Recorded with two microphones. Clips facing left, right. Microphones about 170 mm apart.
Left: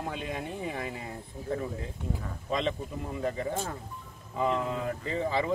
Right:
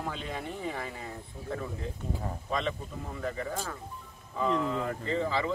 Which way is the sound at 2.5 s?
20° left (ahead or behind).